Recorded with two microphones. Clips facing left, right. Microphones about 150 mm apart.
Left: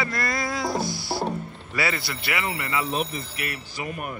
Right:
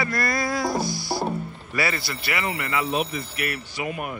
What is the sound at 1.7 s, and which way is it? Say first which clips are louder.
Music: right 1 dB; 20° left (ahead or behind).